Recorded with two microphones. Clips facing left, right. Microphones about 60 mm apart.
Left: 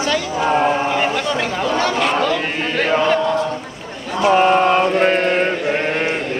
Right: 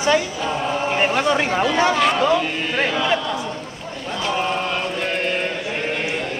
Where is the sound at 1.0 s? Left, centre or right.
Right.